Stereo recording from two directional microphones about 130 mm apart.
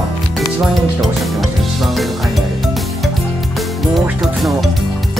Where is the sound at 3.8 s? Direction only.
Centre (ahead or behind).